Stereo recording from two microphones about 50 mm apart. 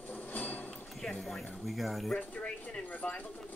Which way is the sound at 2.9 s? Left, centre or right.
Left.